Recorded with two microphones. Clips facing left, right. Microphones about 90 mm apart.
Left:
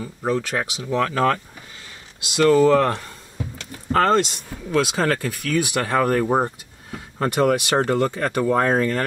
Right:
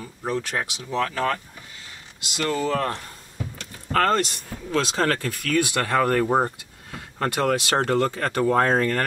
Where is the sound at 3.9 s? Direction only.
20° left (ahead or behind).